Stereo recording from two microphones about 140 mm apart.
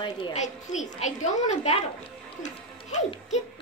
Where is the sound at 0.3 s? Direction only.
55° left (ahead or behind).